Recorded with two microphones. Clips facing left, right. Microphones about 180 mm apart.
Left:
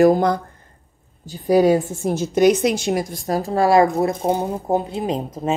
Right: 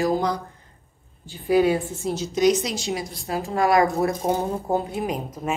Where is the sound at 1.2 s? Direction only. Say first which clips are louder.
Left 4 dB; 40° left (ahead or behind).